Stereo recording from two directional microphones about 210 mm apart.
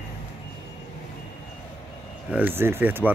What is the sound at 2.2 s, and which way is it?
Speech, 10° right (ahead or behind).